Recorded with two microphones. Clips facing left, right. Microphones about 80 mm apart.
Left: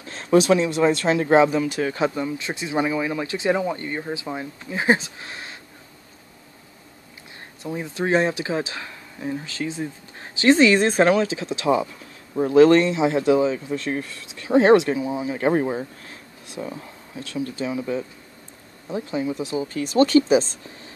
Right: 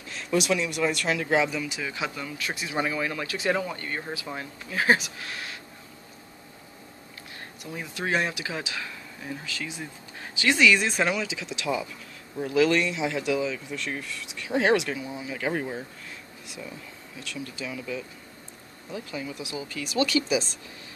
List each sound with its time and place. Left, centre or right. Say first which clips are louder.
0.0 s speech: left 9 dB; left
7.6 s speech: left 7 dB; left